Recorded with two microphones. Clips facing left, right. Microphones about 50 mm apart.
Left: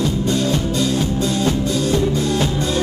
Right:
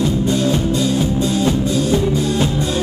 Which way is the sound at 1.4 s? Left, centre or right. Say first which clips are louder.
Right 2 dB; centre.